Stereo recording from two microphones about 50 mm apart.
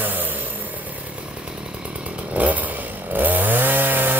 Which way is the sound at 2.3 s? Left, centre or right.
Right.